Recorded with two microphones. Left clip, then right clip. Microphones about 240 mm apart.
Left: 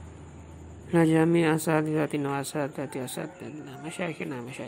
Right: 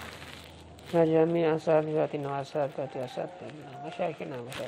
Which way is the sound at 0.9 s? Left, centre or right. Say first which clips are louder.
Left 1 dB; left.